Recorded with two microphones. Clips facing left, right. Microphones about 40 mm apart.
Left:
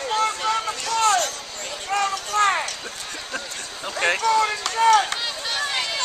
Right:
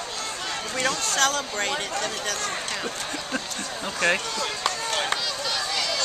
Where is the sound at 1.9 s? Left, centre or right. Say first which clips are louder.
Left 7 dB; left.